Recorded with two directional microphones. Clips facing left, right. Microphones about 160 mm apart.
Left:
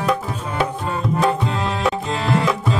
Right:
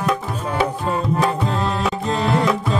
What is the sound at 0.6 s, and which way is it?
Tabla, centre (ahead or behind).